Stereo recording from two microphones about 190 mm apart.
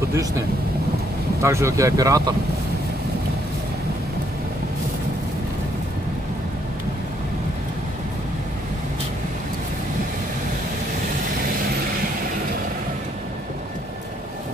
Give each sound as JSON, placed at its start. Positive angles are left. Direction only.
{"t": 1.4, "sound": "speech", "side_deg": -15}